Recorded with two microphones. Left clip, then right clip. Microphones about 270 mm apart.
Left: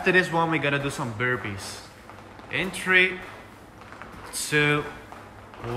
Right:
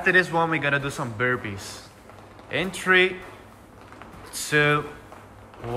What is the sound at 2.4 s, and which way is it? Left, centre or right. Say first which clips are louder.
Speech: right 3 dB; centre.